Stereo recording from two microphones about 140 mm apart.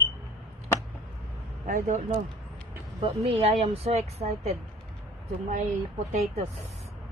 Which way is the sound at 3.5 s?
45° right (ahead or behind).